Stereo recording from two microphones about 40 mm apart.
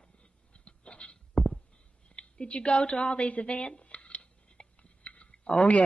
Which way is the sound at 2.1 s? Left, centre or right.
Left.